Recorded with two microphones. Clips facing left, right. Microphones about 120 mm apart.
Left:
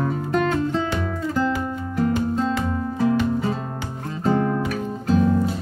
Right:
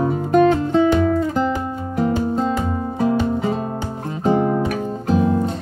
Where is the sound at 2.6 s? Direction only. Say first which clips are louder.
Right 2 dB; 15° right (ahead or behind).